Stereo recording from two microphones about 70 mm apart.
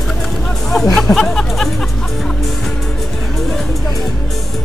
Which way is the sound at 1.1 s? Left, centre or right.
Centre.